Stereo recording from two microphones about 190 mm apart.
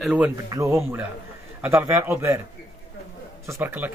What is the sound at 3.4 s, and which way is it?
Speech, 10° right (ahead or behind).